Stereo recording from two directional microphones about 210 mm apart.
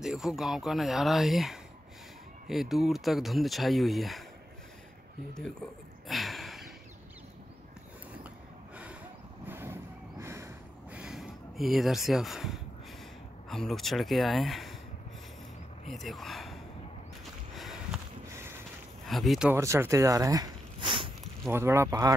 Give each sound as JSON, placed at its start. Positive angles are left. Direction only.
{"t": 0.0, "sound": "speech", "side_deg": 0}
{"t": 6.0, "sound": "a sound", "side_deg": 0}
{"t": 9.5, "sound": "a sound", "side_deg": -10}
{"t": 13.5, "sound": "speech", "side_deg": 0}
{"t": 15.9, "sound": "speech", "side_deg": 0}
{"t": 17.6, "sound": "a sound", "side_deg": 0}
{"t": 19.0, "sound": "speech", "side_deg": 0}
{"t": 19.5, "sound": "speech", "side_deg": -15}
{"t": 21.5, "sound": "speech", "side_deg": -10}